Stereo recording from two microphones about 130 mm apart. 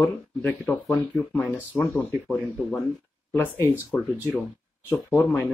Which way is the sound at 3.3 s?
20° left (ahead or behind).